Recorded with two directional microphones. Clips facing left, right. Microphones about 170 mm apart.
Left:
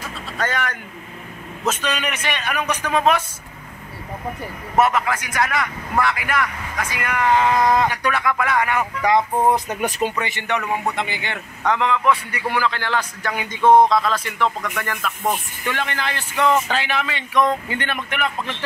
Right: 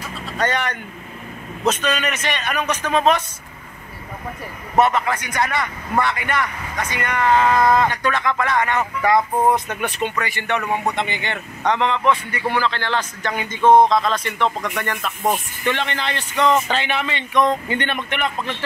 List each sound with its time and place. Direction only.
0.4 s a man's voice: centre (ahead or behind)
4.7 s a man's voice: 5° left (ahead or behind)
9.8 s speech: 40° left (ahead or behind)
10.2 s a man's voice: 15° left (ahead or behind)
13.8 s speech: 20° right (ahead or behind)
14.1 s a man's voice: 5° left (ahead or behind)